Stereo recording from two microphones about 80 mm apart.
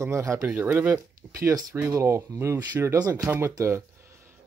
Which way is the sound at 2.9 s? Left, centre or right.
Right.